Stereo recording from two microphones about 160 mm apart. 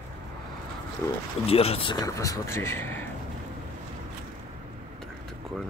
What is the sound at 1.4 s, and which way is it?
Speech, 40° left (ahead or behind).